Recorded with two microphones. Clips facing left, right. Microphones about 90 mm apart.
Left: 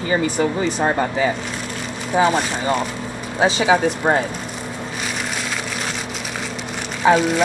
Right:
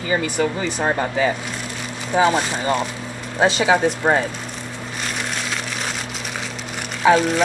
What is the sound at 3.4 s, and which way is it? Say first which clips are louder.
Speech: even; 15° left (ahead or behind).